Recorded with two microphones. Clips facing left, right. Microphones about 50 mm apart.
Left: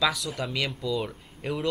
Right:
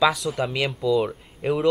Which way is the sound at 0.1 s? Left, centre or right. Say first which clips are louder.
Right 7 dB; centre.